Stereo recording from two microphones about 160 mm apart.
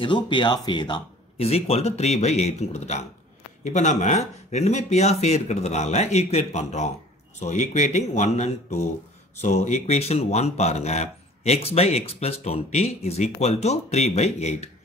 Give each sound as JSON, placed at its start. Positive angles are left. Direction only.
{"t": 0.0, "sound": "speech", "side_deg": 30}